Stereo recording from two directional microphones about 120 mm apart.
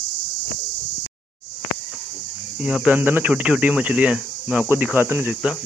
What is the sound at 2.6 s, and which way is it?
Speech, 10° right (ahead or behind).